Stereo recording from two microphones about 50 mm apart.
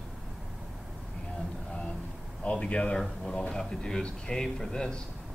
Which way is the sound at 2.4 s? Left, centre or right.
Left.